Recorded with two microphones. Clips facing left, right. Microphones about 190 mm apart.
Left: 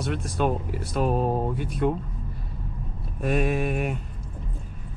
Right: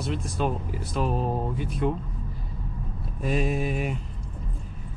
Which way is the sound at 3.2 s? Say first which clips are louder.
Left 2 dB; 60° left (ahead or behind).